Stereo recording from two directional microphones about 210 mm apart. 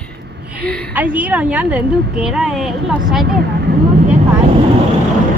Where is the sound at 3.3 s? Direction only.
50° right (ahead or behind).